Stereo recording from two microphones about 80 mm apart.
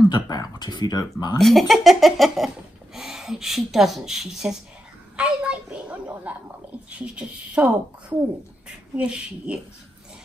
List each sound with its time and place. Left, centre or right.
0.1 s speech: left
1.4 s speech: centre